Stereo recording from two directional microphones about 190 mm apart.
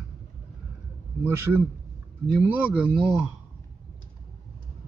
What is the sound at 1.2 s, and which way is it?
Speech, 10° right (ahead or behind).